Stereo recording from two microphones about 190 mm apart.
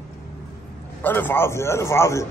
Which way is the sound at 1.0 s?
10° left (ahead or behind).